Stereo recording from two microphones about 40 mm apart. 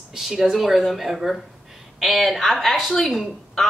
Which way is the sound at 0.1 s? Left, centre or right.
Centre.